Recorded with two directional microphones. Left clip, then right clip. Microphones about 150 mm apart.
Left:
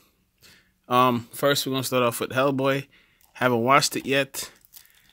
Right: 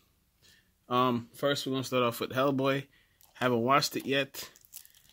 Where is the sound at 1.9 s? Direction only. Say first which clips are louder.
Left 6 dB; 30° left (ahead or behind).